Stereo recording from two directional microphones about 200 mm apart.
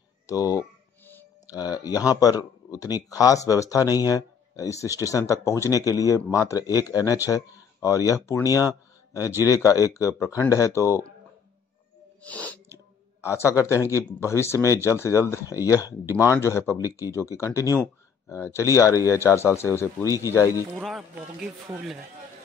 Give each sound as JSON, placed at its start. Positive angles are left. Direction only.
{"t": 0.3, "sound": "a sound", "side_deg": 15}
{"t": 2.7, "sound": "speech", "side_deg": 15}
{"t": 12.2, "sound": "speech", "side_deg": 5}
{"t": 20.7, "sound": "speech", "side_deg": 0}